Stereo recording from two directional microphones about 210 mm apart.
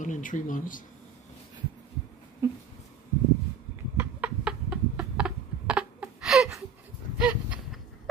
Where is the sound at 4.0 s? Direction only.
5° right (ahead or behind).